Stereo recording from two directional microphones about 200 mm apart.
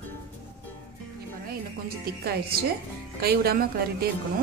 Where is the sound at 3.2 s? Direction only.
50° right (ahead or behind).